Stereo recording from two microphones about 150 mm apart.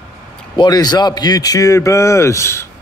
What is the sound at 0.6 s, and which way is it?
A man's voice, 30° left (ahead or behind).